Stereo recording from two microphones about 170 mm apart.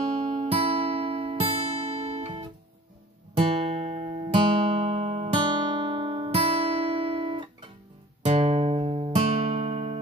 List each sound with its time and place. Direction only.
0.2 s music: 35° right (ahead or behind)